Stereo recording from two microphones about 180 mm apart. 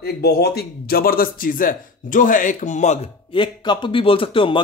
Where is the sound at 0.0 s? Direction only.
60° left (ahead or behind); by 3.0 s 40° left (ahead or behind).